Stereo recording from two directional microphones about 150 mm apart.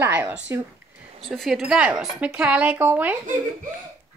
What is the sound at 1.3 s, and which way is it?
Speech, centre (ahead or behind).